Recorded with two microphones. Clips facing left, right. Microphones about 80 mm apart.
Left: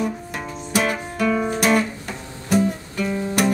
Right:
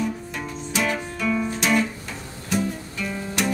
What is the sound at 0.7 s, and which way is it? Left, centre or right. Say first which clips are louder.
Music: left 4 dB; left.